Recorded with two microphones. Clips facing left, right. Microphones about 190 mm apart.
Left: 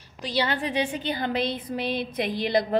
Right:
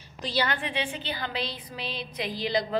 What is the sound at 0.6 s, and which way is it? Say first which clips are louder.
A woman's voice: left 5 dB; 40° left (ahead or behind).